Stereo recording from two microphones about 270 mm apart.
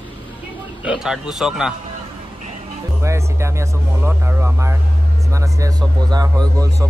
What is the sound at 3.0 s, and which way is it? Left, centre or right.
Speech, centre.